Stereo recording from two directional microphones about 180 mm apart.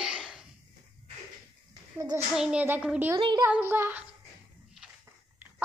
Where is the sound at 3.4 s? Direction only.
10° right (ahead or behind).